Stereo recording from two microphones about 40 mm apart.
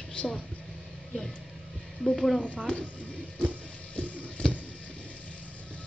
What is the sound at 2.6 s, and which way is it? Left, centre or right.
Speech, left.